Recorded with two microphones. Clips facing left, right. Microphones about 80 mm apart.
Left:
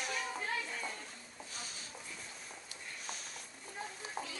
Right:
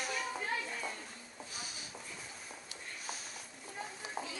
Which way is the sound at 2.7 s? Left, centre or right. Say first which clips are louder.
Right 1 dB; centre.